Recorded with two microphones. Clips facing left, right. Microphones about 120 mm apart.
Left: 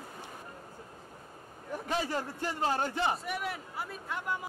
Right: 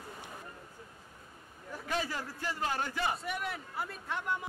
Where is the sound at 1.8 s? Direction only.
30° left (ahead or behind).